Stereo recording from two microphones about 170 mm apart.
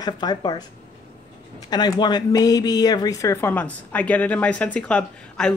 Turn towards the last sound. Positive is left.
turn(degrees=5)  # may be behind; listen again after turning